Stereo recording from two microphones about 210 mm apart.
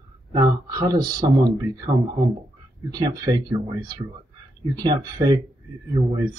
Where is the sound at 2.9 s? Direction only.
20° right (ahead or behind).